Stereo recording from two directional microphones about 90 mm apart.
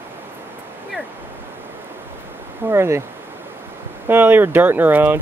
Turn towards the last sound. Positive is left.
turn(degrees=-20)  # may be behind; listen again after turning